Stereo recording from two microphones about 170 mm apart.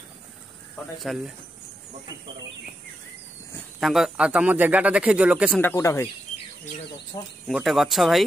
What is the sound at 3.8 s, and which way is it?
Speech, centre (ahead or behind).